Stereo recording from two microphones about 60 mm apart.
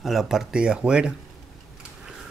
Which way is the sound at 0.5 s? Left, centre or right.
Centre.